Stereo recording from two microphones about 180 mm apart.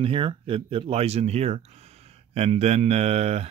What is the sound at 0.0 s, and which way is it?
Speech, 30° right (ahead or behind).